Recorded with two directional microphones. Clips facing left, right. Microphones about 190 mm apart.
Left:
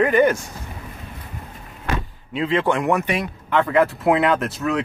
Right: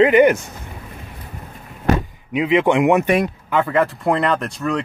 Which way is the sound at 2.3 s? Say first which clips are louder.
Right 5 dB; 15° right (ahead or behind).